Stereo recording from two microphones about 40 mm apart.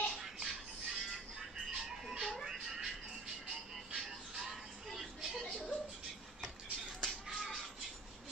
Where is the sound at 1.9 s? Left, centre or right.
Centre.